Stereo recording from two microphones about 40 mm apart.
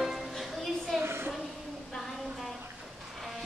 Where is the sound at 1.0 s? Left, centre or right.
Right.